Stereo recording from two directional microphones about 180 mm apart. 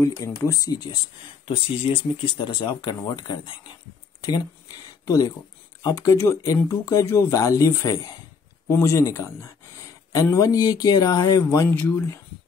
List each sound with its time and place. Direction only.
0.0 s speech: 15° left (ahead or behind)
5.0 s speech: 20° left (ahead or behind)